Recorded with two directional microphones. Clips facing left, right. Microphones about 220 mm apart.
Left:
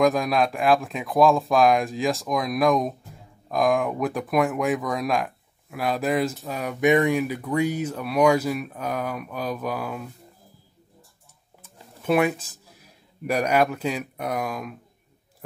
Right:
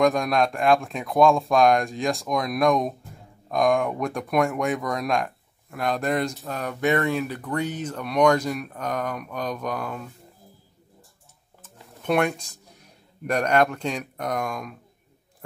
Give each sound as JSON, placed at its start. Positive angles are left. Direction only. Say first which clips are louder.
{"t": 0.0, "sound": "speech", "louder": "even", "side_deg": 0}
{"t": 11.6, "sound": "speech", "louder": "left 1 dB", "side_deg": 5}